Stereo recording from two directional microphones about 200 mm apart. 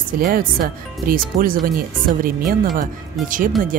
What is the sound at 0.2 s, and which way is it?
Speech, 45° right (ahead or behind).